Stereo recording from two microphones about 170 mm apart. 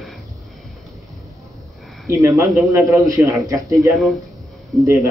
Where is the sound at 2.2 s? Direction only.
15° right (ahead or behind).